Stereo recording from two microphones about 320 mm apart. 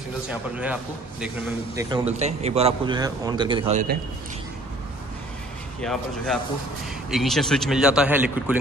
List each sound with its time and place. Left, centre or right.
0.3 s speech: centre
1.8 s a man's voice: centre
2.1 s a man's voice: centre
5.8 s speech: centre